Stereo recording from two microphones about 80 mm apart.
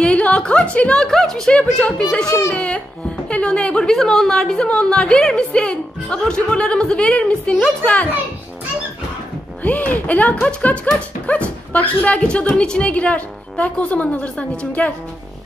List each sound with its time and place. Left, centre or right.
0.0 s a sound: centre
0.7 s a woman's voice: centre
9.6 s a woman's voice: left